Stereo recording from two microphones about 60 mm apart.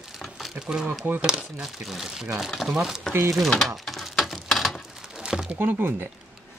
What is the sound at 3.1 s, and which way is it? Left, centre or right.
Speech, right.